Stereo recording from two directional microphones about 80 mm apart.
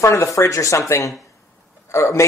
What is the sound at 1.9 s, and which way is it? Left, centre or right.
Speech, left.